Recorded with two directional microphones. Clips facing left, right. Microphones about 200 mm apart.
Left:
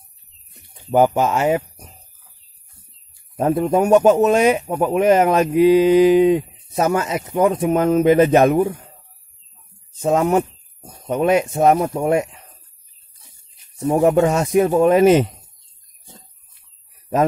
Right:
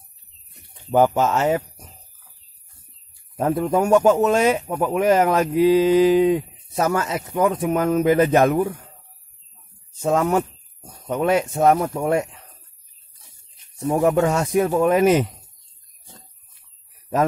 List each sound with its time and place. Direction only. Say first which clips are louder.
0.9 s speech: left 2 dB; 15° left (ahead or behind)
3.3 s speech: left 3 dB; 20° left (ahead or behind)
10.0 s speech: left 3 dB; 20° left (ahead or behind)
13.8 s speech: left 3 dB; 20° left (ahead or behind)